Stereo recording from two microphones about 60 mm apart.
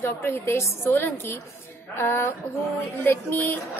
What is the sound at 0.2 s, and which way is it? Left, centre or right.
Speech, left.